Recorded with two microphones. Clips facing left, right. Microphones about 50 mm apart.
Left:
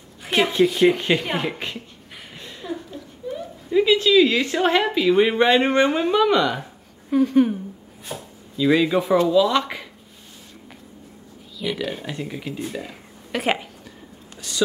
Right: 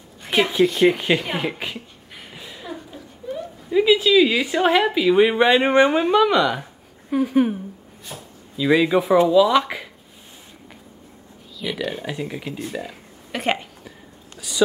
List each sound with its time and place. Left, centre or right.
0.2 s speech: centre
2.3 s a sound: centre
5.7 s speech: centre
8.1 s speech: left
8.5 s speech: centre
11.5 s speech: centre
12.6 s a sound: centre